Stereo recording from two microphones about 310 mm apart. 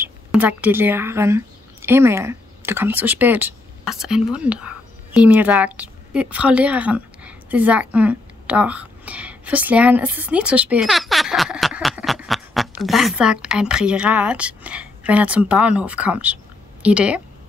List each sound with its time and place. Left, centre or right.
0.0 s a woman's voice: centre